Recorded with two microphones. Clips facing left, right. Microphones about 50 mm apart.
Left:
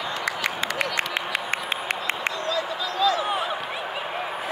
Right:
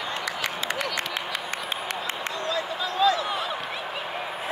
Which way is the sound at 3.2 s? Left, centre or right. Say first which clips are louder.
Left 3 dB; centre.